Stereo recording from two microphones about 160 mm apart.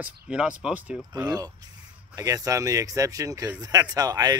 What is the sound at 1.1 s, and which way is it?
Speech, 25° right (ahead or behind).